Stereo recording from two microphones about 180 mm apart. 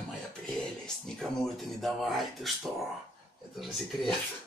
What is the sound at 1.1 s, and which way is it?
Speech, centre (ahead or behind).